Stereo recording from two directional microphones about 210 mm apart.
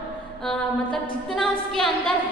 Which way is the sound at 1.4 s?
5° left (ahead or behind).